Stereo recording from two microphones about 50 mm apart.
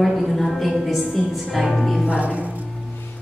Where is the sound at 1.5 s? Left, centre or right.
Centre.